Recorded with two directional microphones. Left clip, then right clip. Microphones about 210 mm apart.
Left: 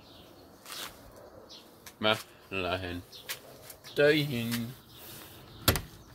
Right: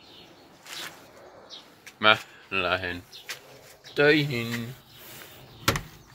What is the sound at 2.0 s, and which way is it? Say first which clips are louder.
Speech: right 8 dB; 10° left (ahead or behind).